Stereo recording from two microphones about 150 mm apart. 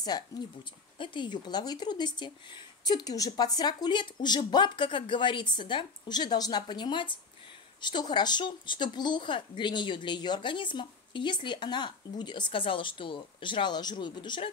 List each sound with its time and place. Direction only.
0.3 s speech: 20° left (ahead or behind)